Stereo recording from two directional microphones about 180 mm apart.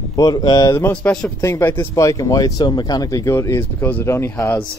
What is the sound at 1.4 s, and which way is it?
Speech, 15° left (ahead or behind).